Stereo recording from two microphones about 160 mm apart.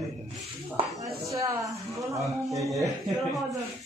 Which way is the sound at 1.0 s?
20° right (ahead or behind).